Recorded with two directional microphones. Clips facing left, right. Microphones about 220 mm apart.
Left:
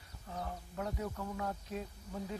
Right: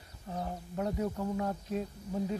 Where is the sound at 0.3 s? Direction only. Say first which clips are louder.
Right 5 dB; 30° right (ahead or behind).